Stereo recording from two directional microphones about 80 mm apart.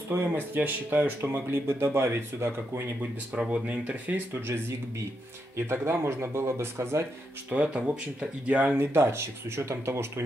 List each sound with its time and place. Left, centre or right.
0.1 s speech: right
3.3 s speech: centre
4.3 s speech: right
7.5 s speech: centre
8.9 s speech: right